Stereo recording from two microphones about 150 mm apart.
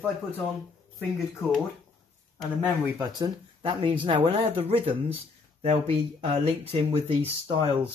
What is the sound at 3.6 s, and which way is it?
Speech, 35° right (ahead or behind).